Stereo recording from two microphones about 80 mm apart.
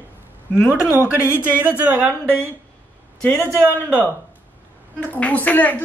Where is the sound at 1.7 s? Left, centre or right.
Right.